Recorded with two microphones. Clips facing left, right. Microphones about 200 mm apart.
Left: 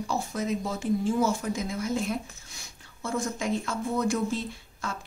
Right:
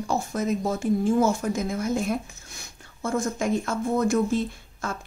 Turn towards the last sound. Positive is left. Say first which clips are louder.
# right 4 dB
turn(degrees=-50)  # may be behind; listen again after turning